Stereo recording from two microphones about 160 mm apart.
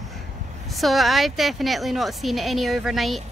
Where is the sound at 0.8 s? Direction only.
Centre (ahead or behind).